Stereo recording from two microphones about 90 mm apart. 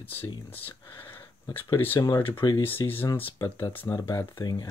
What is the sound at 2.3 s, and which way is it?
Speech, 65° left (ahead or behind).